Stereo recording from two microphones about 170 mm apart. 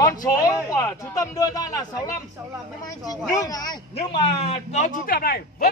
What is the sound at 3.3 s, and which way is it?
Speech, 20° left (ahead or behind).